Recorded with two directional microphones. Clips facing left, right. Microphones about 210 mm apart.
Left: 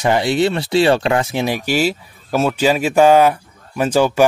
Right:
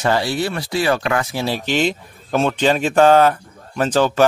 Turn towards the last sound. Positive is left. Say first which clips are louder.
# left 2 dB
turn(degrees=10)  # may be behind; listen again after turning